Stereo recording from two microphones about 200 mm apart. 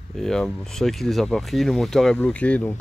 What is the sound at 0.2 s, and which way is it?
Speech, centre (ahead or behind).